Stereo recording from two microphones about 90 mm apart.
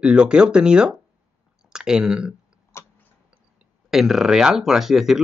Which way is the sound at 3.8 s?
5° right (ahead or behind).